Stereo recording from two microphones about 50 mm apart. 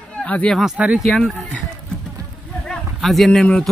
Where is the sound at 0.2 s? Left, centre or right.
Left.